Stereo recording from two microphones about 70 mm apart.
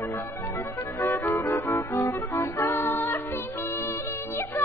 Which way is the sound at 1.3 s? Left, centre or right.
Left.